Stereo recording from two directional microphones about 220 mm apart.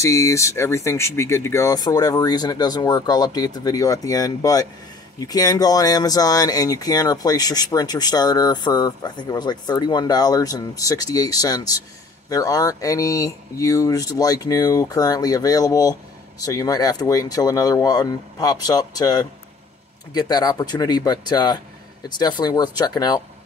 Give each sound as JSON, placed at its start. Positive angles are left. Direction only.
{"t": 0.0, "sound": "speech", "side_deg": 15}